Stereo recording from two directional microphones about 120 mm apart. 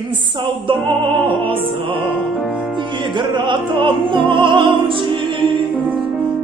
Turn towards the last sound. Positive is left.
turn(degrees=-45)  # may be behind; listen again after turning